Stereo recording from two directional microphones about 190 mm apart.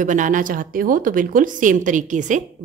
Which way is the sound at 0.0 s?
40° right (ahead or behind).